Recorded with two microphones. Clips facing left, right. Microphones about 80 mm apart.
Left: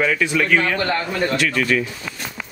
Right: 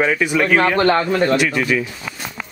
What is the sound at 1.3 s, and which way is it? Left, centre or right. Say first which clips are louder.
Speech: right 2 dB; centre.